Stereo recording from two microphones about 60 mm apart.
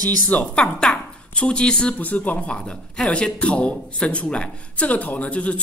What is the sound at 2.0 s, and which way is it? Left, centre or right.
A woman's voice, left.